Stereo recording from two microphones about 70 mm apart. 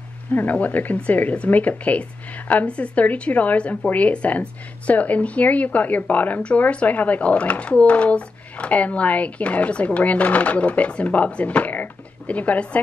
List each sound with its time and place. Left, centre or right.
0.3 s speech: left